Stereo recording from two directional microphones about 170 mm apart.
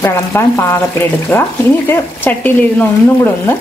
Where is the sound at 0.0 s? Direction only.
15° left (ahead or behind).